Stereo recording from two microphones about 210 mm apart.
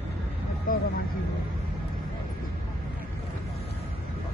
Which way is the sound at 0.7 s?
40° left (ahead or behind).